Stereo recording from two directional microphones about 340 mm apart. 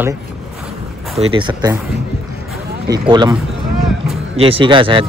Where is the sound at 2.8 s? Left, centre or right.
Centre.